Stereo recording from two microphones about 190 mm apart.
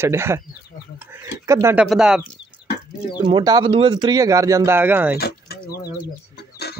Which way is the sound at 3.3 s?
25° right (ahead or behind).